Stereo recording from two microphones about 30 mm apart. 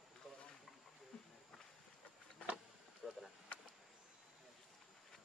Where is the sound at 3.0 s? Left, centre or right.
Centre.